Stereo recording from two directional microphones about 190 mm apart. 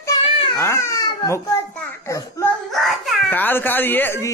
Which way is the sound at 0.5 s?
15° left (ahead or behind).